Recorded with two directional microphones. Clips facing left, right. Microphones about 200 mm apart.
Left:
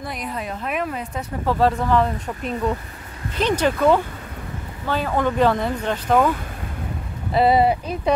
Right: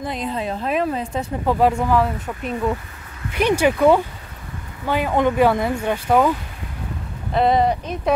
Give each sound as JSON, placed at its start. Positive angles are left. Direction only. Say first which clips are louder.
{"t": 0.0, "sound": "a woman's voice", "louder": "right 4 dB", "side_deg": -25}
{"t": 1.4, "sound": "speech", "louder": "right 1 dB", "side_deg": -15}
{"t": 7.3, "sound": "speech", "louder": "left 1 dB", "side_deg": 5}